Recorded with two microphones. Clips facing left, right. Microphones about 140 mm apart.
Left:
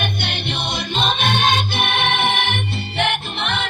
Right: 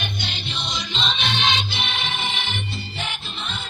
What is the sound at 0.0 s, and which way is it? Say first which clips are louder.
Music: left 6 dB; 60° left (ahead or behind).